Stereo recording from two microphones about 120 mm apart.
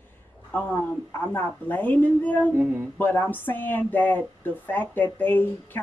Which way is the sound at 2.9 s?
15° left (ahead or behind).